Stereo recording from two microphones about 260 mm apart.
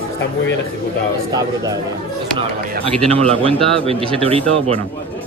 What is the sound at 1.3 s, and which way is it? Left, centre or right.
Speech, centre.